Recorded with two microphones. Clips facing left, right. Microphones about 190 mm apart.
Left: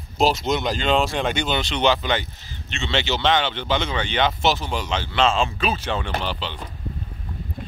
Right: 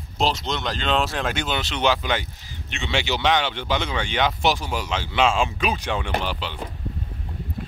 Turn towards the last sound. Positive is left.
turn(degrees=-10)  # may be behind; listen again after turning